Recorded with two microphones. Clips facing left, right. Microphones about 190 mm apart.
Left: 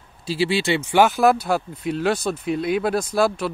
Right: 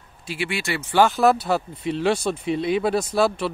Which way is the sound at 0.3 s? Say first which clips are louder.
Left 6 dB; 30° left (ahead or behind).